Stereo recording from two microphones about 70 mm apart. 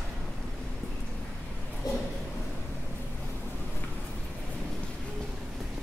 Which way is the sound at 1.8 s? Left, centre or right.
Left.